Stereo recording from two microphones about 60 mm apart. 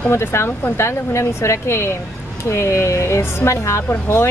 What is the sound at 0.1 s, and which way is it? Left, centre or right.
Speech, left.